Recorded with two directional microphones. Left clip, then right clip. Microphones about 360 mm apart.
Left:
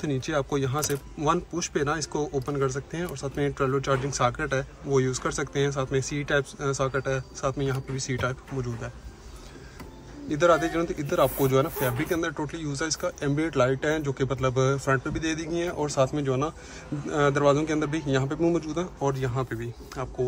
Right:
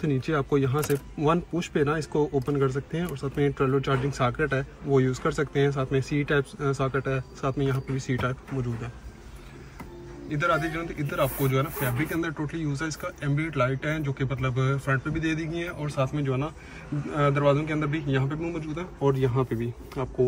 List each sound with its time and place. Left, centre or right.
0.0 s speech: centre
10.3 s speech: centre